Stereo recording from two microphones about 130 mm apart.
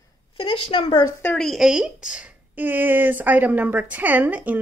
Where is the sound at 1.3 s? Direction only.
Centre (ahead or behind).